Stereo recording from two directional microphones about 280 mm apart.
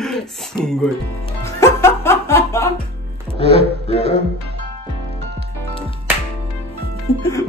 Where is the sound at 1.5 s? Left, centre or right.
Centre.